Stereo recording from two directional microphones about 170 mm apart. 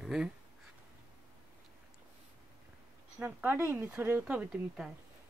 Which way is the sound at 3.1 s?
10° right (ahead or behind).